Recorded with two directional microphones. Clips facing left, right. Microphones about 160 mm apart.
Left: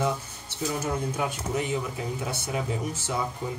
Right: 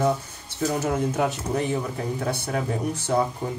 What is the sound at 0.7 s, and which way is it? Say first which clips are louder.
Speech: right 5 dB; 75° right (ahead or behind).